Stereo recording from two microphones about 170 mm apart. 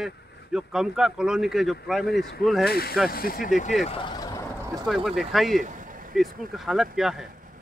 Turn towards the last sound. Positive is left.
turn(degrees=-5)  # may be behind; listen again after turning